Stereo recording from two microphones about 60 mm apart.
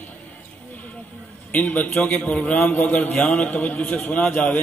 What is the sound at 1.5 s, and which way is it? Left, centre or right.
A man's voice, left.